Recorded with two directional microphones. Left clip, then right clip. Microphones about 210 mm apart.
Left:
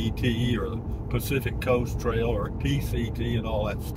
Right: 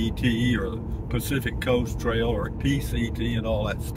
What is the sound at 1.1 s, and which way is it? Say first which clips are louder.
Speech: even; 15° right (ahead or behind).